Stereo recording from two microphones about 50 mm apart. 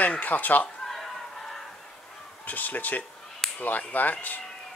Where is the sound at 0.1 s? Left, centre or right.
Left.